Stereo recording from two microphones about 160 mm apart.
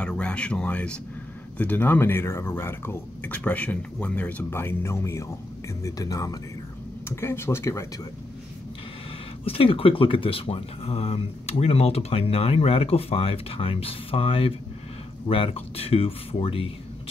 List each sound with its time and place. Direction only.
0.0 s speech: 5° left (ahead or behind)
9.4 s speech: 35° left (ahead or behind)